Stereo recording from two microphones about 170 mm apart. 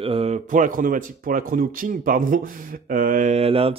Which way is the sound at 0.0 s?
35° right (ahead or behind).